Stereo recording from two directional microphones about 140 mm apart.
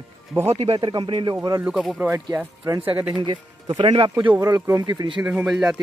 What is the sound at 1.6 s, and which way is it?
Speech, centre (ahead or behind).